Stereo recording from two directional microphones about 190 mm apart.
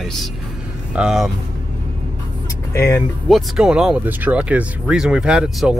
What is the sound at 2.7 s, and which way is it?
Speech, 15° left (ahead or behind).